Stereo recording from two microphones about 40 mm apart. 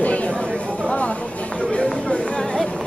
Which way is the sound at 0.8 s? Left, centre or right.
Left.